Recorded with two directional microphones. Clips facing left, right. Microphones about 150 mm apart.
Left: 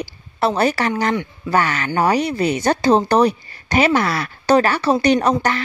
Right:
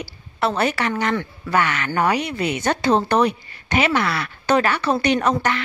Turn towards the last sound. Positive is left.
turn(degrees=40)  # may be behind; listen again after turning